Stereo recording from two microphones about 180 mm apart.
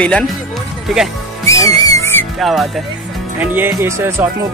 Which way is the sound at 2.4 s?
Centre (ahead or behind).